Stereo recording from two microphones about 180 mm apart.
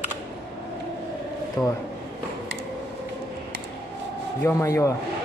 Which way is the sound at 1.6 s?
20° left (ahead or behind).